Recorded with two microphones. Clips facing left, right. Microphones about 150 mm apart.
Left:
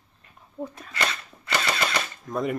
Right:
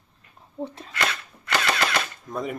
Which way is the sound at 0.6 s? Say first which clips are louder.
Right 2 dB; 25° right (ahead or behind).